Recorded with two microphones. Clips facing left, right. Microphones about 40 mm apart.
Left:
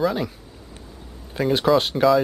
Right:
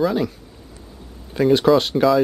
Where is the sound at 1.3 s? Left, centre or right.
Centre.